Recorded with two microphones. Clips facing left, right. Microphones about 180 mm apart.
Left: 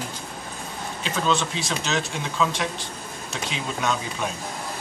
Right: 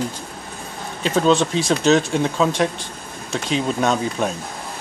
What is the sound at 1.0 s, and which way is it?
Speech, 40° right (ahead or behind).